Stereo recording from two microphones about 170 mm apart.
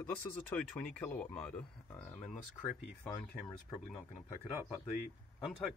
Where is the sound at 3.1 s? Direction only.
25° left (ahead or behind).